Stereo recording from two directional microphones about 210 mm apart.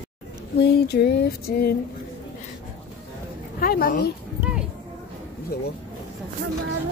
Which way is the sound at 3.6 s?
45° left (ahead or behind).